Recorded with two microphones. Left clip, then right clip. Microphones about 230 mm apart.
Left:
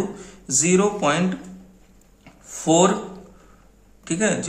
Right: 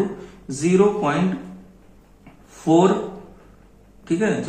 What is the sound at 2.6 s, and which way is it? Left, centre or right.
Speech, left.